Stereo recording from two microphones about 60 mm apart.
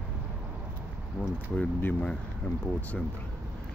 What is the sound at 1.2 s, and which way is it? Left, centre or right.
Speech, centre.